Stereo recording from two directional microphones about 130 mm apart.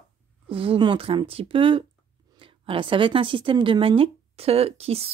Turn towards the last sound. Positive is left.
turn(degrees=-50)  # may be behind; listen again after turning